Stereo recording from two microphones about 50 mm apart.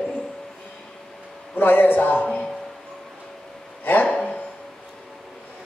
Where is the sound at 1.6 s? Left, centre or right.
Left.